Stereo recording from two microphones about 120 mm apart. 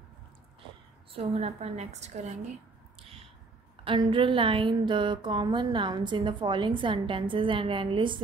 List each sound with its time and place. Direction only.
1.1 s a woman's voice: 50° right (ahead or behind); by 2.3 s 70° right (ahead or behind)
3.8 s a woman's voice: 45° right (ahead or behind)